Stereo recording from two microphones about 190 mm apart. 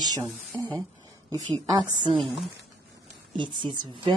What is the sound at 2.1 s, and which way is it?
Speech, centre (ahead or behind).